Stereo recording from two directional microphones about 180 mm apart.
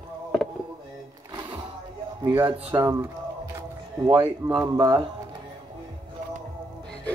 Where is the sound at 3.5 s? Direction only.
20° right (ahead or behind).